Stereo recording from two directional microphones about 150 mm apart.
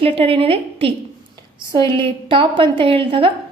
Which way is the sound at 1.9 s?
35° right (ahead or behind).